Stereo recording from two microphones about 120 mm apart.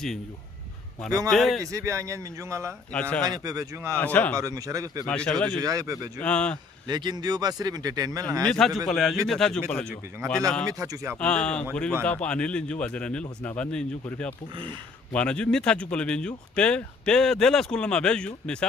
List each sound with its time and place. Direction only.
1.3 s a man's voice: centre (ahead or behind)
1.6 s speech: 25° right (ahead or behind)
2.9 s speech: 10° left (ahead or behind)
3.3 s speech: 30° right (ahead or behind)
3.9 s speech: 15° left (ahead or behind)
4.4 s speech: 25° right (ahead or behind)
5.0 s speech: 10° left (ahead or behind)
5.6 s speech: 30° right (ahead or behind)
6.2 s speech: 10° left (ahead or behind)
6.9 s speech: 35° right (ahead or behind)
8.5 s a man's voice: 5° left (ahead or behind)
10.7 s speech: 25° right (ahead or behind)
11.1 s speech: 5° left (ahead or behind)
15.1 s speech: 10° left (ahead or behind)